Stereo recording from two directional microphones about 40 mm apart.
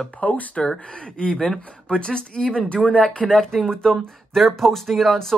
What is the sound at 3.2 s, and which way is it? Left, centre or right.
Speech, centre.